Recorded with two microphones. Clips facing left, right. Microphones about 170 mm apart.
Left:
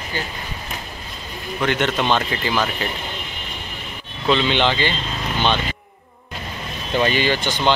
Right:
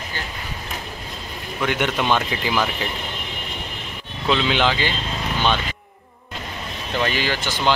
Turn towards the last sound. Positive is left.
turn(degrees=-5)  # may be behind; listen again after turning